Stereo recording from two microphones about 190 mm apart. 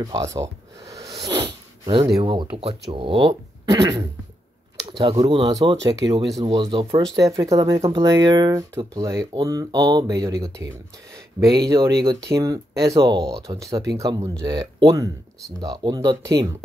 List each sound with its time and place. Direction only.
0.0 s speech: 20° right (ahead or behind)
1.1 s sneeze: 25° right (ahead or behind)
2.1 s speech: 25° right (ahead or behind)
4.8 s a sound: 30° right (ahead or behind)
5.1 s speech: 20° right (ahead or behind)
12.0 s speech: 20° right (ahead or behind)